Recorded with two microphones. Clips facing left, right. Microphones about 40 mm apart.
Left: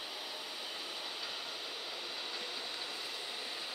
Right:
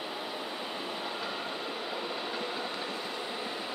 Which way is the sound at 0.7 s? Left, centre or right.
Right.